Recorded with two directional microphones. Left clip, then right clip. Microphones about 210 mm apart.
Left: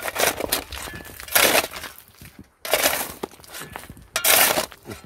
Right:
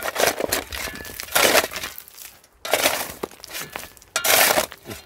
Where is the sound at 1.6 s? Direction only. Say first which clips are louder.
Right 3 dB; 30° right (ahead or behind).